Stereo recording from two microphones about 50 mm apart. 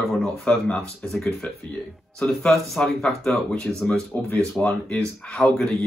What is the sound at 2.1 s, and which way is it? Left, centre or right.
Speech, centre.